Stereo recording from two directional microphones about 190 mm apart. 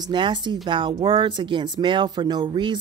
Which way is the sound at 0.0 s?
25° right (ahead or behind).